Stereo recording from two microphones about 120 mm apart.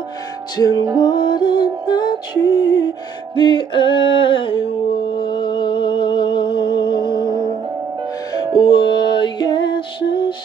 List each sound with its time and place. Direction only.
0.6 s music: 35° left (ahead or behind)
8.5 s music: 40° left (ahead or behind)